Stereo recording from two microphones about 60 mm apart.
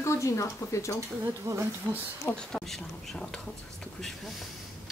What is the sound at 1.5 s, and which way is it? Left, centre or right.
Speech, right.